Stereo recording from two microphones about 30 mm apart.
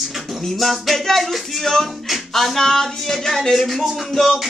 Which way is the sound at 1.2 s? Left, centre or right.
Centre.